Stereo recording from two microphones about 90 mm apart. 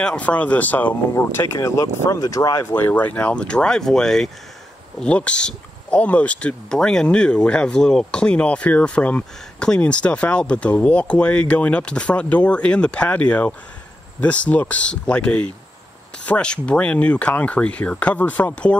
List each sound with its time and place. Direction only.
0.0 s speech: 15° left (ahead or behind)
1.1 s speech: 35° left (ahead or behind)
2.7 s speech: 20° left (ahead or behind)